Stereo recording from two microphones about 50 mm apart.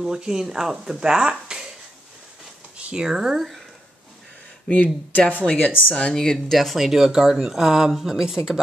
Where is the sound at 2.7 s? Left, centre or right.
Centre.